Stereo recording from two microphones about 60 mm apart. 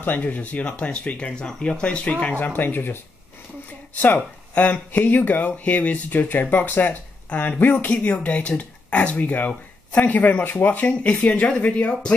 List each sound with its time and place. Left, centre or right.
0.0 s speech: left